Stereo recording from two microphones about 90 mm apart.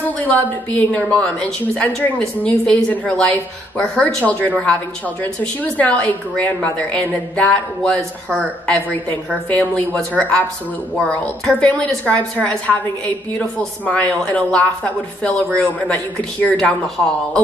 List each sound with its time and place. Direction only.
0.2 s a woman's voice: 20° left (ahead or behind)
4.2 s a woman's voice: 15° left (ahead or behind)
11.4 s a woman's voice: 10° left (ahead or behind)